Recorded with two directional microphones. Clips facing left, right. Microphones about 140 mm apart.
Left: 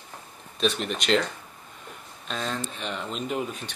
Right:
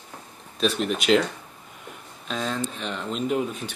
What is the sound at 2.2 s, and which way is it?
Speech, centre (ahead or behind).